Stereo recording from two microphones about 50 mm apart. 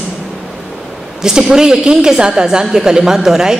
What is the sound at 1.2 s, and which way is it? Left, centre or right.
A woman's voice, centre.